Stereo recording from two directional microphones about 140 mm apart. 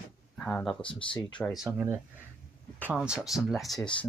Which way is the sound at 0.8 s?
35° left (ahead or behind).